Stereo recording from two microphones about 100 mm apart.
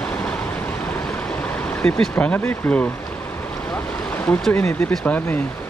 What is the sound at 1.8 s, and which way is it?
Speech, 10° left (ahead or behind).